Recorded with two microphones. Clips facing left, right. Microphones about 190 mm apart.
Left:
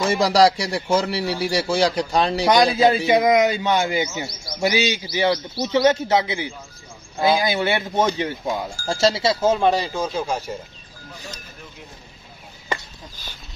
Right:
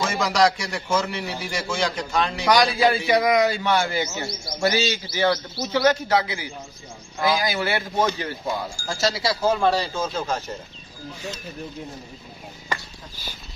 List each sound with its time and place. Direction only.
0.0 s a man's voice: 35° left (ahead or behind)
2.4 s a man's voice: 20° left (ahead or behind)